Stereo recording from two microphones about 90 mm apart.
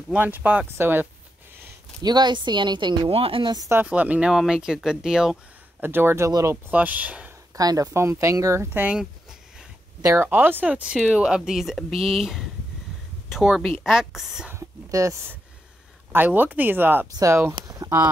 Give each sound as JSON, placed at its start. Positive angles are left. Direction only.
{"t": 0.1, "sound": "speech", "side_deg": -20}
{"t": 2.0, "sound": "speech", "side_deg": -55}
{"t": 3.8, "sound": "speech", "side_deg": -15}
{"t": 5.8, "sound": "speech", "side_deg": -25}
{"t": 6.7, "sound": "speech", "side_deg": -15}
{"t": 7.5, "sound": "speech", "side_deg": -45}
{"t": 10.0, "sound": "speech", "side_deg": -25}
{"t": 14.5, "sound": "a sound", "side_deg": -35}
{"t": 16.1, "sound": "speech", "side_deg": -20}
{"t": 17.1, "sound": "speech", "side_deg": -35}
{"t": 17.6, "sound": "a sound", "side_deg": -40}